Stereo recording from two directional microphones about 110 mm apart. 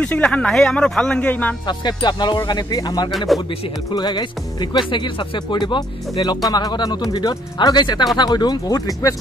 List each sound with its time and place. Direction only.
0.0 s speech: 10° left (ahead or behind)
1.7 s speech: 40° left (ahead or behind)
3.1 s speech: centre (ahead or behind)
3.9 s speech: 40° left (ahead or behind)